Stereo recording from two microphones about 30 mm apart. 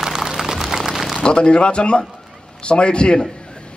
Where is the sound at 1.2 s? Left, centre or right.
Left.